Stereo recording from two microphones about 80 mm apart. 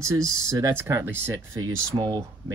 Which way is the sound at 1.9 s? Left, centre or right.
Right.